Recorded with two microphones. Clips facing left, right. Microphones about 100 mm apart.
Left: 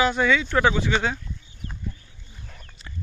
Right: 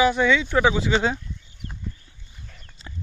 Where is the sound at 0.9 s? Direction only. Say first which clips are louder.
Right 2 dB; 20° right (ahead or behind).